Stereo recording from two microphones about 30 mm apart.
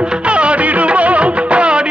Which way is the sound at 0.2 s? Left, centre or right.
Right.